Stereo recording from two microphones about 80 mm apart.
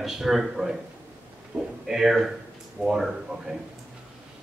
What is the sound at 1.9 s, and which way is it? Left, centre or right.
A man's voice, centre.